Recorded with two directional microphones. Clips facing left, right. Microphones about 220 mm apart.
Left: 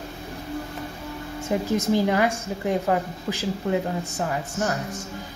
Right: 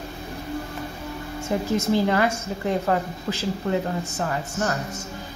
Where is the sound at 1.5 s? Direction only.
15° left (ahead or behind).